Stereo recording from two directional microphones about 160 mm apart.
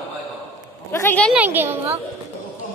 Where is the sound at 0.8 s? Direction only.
15° left (ahead or behind).